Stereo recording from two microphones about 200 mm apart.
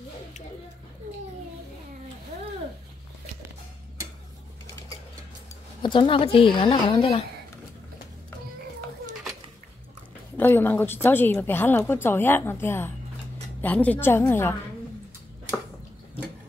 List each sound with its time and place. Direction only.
5.8 s speech: 25° left (ahead or behind)
10.3 s a woman's voice: 10° left (ahead or behind)